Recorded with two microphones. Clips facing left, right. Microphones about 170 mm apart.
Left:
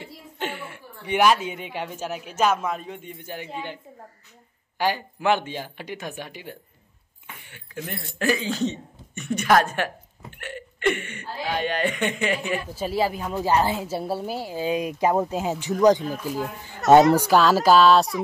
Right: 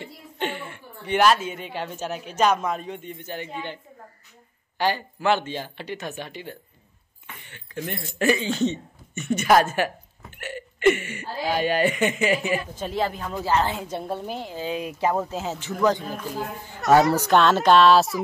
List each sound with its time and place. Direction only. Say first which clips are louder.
0.0 s a woman's voice: right 2 dB; 5° left (ahead or behind)
12.7 s a woman's voice: left 2 dB; 10° left (ahead or behind)
17.2 s speech: even; 5° left (ahead or behind)